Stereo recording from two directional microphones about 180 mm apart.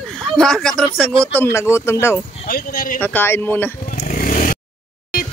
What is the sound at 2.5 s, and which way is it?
Speech, 55° left (ahead or behind).